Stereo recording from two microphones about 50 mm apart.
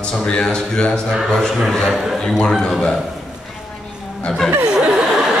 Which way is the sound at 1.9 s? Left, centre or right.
Centre.